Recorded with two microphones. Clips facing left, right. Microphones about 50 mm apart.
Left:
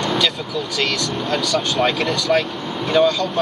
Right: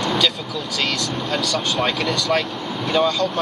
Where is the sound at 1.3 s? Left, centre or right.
Centre.